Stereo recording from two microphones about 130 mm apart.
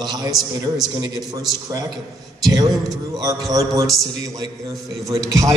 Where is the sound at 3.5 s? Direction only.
25° right (ahead or behind).